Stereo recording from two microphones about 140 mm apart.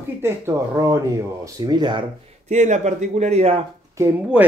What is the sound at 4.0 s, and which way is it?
Speech, 20° right (ahead or behind).